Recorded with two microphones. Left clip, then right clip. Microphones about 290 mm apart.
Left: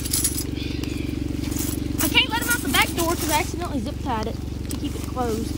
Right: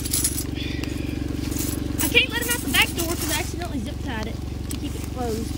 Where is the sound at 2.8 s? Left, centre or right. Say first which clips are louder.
Left 1 dB; centre.